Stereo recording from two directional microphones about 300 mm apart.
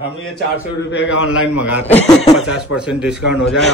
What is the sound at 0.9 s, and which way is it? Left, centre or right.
Speech, left.